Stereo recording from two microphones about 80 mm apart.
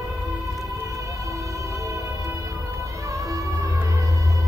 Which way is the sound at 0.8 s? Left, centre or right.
Right.